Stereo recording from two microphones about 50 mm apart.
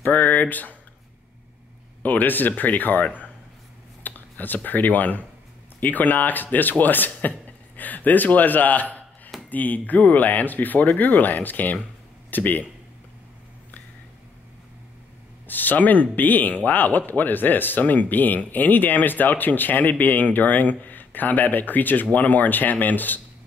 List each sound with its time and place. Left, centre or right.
0.0 s speech: left
2.0 s speech: left
15.4 s speech: left